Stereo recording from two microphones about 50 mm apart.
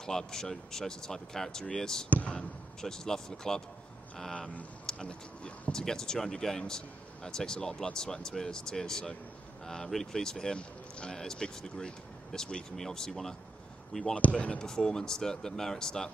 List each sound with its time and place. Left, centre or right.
0.0 s speech: centre
2.0 s speech: left
2.8 s speech: centre